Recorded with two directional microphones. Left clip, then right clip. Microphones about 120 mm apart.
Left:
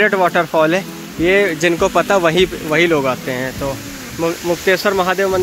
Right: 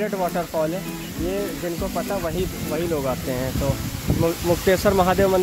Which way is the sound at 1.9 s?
75° left (ahead or behind).